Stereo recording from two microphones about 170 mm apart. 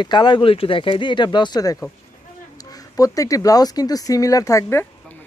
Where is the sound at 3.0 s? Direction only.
20° left (ahead or behind).